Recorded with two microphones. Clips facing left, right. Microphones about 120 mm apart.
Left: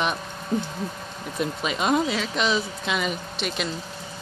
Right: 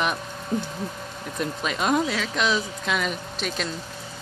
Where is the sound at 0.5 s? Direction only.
5° left (ahead or behind).